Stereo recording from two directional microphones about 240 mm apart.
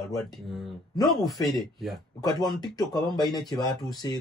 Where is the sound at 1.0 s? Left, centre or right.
Centre.